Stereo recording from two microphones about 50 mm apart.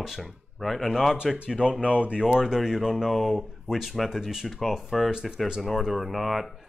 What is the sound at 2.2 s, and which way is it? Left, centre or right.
Speech, centre.